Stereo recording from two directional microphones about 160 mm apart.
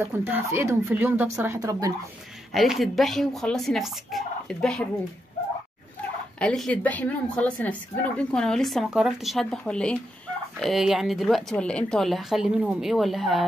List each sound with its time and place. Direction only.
0.0 s speech: 15° right (ahead or behind)
2.5 s a woman's voice: centre (ahead or behind)
6.4 s a woman's voice: 5° left (ahead or behind)